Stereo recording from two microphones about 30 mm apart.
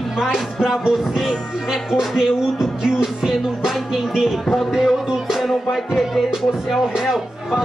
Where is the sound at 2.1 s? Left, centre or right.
Centre.